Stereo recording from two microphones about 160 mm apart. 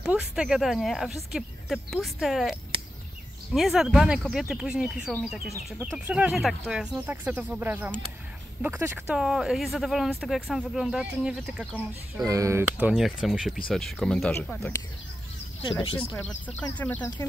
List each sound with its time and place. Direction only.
0.0 s speech: 5° right (ahead or behind)
3.5 s speech: centre (ahead or behind)
12.3 s speech: 20° right (ahead or behind); by 14.7 s 5° left (ahead or behind)
15.6 s speech: 30° left (ahead or behind)
16.4 s speech: 10° left (ahead or behind)